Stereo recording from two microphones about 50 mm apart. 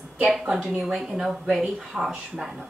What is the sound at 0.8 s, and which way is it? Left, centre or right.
A woman's voice, centre.